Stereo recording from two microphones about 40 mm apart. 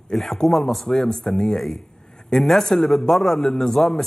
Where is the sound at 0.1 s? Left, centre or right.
Centre.